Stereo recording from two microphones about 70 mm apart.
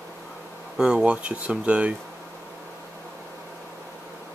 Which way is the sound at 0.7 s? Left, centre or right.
Centre.